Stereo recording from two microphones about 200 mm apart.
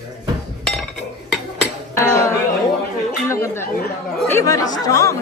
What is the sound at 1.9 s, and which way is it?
Speech, 15° left (ahead or behind).